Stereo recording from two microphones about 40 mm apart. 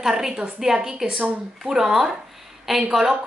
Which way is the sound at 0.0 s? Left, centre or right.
Centre.